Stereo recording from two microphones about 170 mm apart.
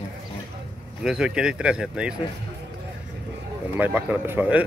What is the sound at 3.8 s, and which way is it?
Speech, 10° right (ahead or behind).